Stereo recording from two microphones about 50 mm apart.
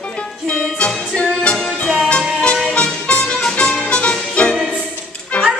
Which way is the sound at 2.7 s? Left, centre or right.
Left.